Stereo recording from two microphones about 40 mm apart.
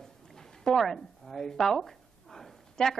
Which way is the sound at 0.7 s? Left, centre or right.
Centre.